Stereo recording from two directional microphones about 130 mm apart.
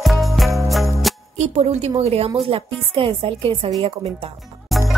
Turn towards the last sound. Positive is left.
turn(degrees=0)  # may be behind; listen again after turning